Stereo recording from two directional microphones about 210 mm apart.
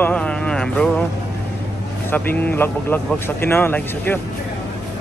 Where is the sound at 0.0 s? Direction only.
5° left (ahead or behind).